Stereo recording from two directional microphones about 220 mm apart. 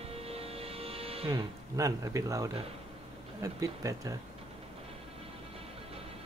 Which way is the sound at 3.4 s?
15° right (ahead or behind).